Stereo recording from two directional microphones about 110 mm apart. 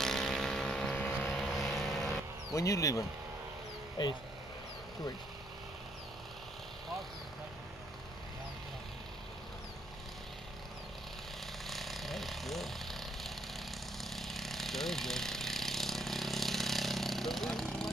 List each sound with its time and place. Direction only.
0.0 s boat: 5° left (ahead or behind)
0.9 s vehicle: 15° left (ahead or behind)
1.3 s vehicle: centre (ahead or behind)
2.5 s speech: 30° left (ahead or behind)
11.6 s vehicle: centre (ahead or behind)
14.0 s a sound: centre (ahead or behind)